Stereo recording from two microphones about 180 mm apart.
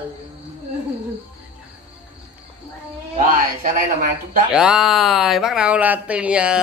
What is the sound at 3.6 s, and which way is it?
Speech, 50° right (ahead or behind).